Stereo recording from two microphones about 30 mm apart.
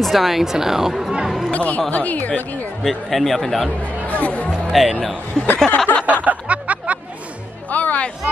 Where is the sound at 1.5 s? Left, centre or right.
Left.